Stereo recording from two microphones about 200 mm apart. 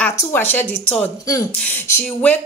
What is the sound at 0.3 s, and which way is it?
Speech, 10° left (ahead or behind).